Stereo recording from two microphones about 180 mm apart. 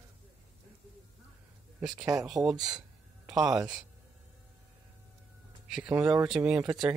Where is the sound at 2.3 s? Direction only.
Centre (ahead or behind).